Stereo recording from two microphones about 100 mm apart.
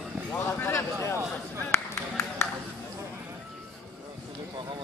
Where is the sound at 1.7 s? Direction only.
25° left (ahead or behind).